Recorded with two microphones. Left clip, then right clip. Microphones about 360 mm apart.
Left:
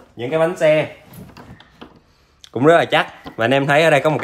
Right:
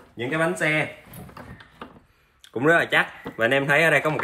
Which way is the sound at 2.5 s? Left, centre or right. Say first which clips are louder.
Left 6 dB; left.